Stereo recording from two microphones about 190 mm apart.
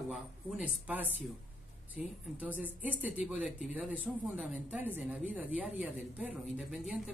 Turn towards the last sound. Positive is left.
turn(degrees=-5)  # may be behind; listen again after turning